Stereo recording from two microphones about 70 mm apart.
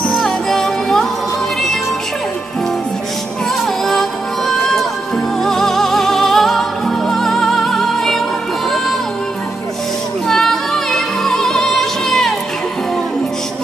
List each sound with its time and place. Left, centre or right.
0.1 s music: centre
3.8 s music: centre
10.2 s music: centre